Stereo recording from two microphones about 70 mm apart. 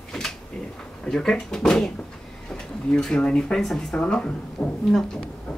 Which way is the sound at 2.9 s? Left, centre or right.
Centre.